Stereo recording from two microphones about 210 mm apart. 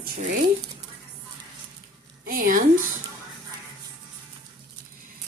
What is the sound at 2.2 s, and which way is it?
Speech, 40° right (ahead or behind).